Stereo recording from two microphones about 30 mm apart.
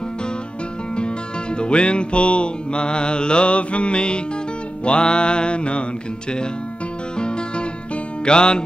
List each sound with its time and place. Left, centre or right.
0.9 s music: left
7.2 s guitar: left
8.3 s music: left